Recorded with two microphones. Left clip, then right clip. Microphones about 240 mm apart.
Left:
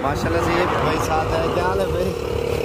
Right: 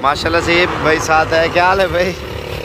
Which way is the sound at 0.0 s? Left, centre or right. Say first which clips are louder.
Right 7 dB; centre.